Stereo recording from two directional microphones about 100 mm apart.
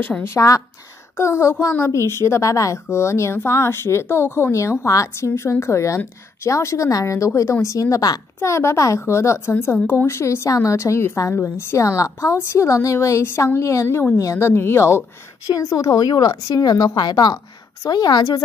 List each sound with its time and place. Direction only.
0.0 s a woman's voice: 25° left (ahead or behind)
15.5 s a woman's voice: 35° left (ahead or behind)